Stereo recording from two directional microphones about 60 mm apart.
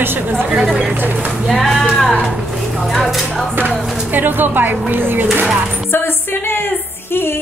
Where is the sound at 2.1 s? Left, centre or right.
Centre.